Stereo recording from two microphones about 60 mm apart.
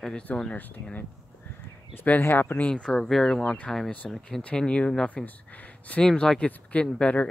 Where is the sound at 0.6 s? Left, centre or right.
Left.